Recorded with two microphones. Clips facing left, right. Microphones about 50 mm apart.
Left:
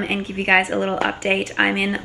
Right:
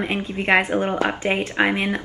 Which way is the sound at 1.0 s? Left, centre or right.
Left.